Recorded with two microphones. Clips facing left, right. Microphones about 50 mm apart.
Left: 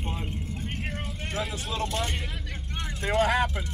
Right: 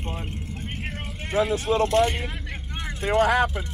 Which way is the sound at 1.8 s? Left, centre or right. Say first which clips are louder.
Right 9 dB; centre.